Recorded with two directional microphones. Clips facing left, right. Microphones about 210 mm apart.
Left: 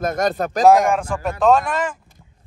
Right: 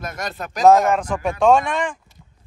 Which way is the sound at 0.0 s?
45° left (ahead or behind).